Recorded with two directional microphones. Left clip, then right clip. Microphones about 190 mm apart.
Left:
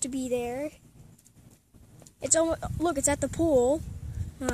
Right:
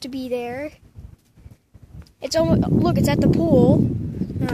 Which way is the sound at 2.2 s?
10° right (ahead or behind).